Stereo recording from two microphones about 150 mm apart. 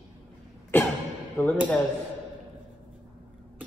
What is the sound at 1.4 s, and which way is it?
Speech, 10° left (ahead or behind).